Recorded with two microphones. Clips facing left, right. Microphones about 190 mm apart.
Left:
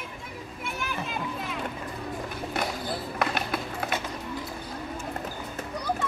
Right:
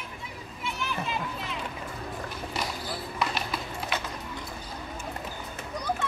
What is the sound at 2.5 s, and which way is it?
Run, 55° left (ahead or behind).